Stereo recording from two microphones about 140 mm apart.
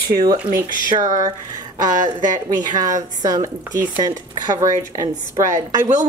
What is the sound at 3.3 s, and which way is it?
Speech, 25° right (ahead or behind).